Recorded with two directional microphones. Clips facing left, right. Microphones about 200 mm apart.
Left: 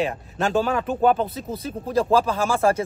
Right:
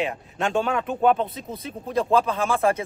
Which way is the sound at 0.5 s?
5° left (ahead or behind).